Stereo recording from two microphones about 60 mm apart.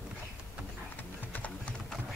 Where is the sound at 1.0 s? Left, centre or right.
Left.